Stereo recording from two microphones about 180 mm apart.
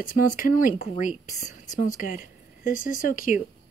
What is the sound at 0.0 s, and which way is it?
Speech, 50° left (ahead or behind).